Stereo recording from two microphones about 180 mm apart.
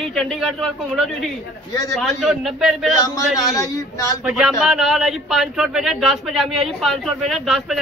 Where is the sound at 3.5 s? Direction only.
20° left (ahead or behind).